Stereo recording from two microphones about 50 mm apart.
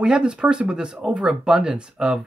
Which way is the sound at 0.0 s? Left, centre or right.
Centre.